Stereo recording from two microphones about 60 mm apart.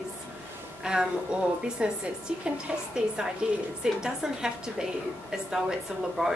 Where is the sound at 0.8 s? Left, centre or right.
Centre.